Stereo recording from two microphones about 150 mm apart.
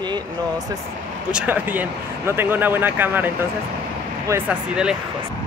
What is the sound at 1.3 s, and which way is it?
Speech, 10° right (ahead or behind).